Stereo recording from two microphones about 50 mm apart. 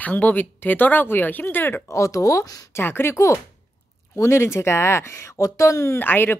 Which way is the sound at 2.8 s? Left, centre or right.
Left.